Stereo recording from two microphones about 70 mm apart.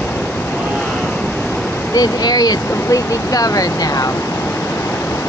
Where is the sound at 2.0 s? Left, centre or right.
Left.